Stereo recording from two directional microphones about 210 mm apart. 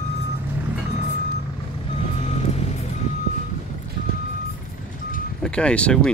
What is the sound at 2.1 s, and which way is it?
Vehicle, 30° left (ahead or behind).